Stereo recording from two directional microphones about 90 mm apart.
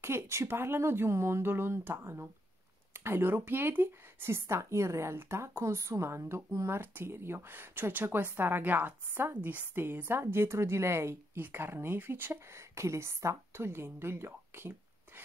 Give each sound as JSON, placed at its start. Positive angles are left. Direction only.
{"t": 0.0, "sound": "speech", "side_deg": -30}